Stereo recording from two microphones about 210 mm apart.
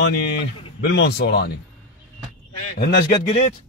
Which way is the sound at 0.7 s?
60° left (ahead or behind).